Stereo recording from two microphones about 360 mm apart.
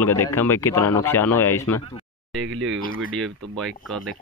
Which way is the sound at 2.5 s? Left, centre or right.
Right.